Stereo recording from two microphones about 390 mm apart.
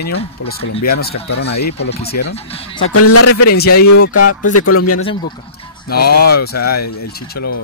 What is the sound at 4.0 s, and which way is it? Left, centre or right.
Speech, left.